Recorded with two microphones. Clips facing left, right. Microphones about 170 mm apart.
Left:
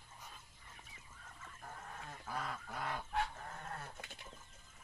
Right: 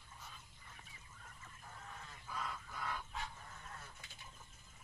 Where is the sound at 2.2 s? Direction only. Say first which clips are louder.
Left 2 dB; 70° left (ahead or behind).